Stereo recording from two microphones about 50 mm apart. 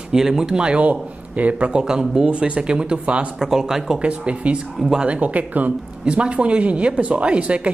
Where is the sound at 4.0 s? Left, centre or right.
Right.